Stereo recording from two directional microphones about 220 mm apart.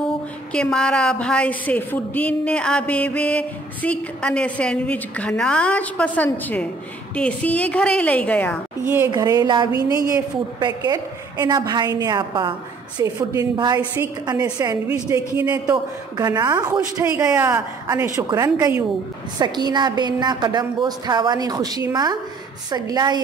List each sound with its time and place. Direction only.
0.5 s a woman's voice: 5° left (ahead or behind)
8.8 s a woman's voice: 10° right (ahead or behind)